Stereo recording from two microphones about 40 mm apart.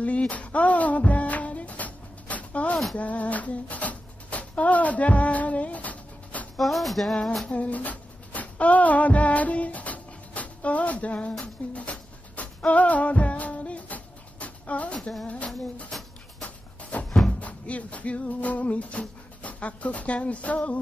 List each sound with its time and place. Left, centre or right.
0.0 s a sound: left
6.5 s music: centre
7.4 s speech: left
11.3 s music: left
15.2 s a sound: left
16.4 s music: left